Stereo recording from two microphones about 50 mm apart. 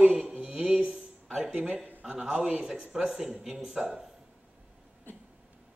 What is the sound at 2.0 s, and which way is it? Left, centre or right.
A man's voice, centre.